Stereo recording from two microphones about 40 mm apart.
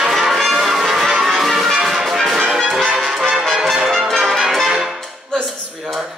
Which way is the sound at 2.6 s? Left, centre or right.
Centre.